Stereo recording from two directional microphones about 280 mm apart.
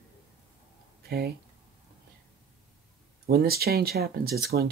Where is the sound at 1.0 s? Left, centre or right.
Right.